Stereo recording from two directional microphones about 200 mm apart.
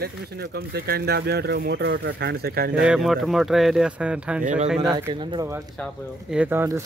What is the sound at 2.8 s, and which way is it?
Speech, 5° right (ahead or behind).